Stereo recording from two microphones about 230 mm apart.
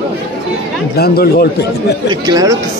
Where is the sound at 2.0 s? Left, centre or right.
Centre.